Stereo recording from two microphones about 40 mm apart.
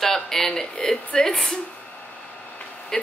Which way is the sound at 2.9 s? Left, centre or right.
Centre.